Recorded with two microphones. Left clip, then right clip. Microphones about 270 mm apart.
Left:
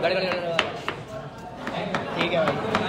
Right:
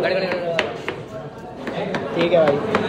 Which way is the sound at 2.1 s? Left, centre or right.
Centre.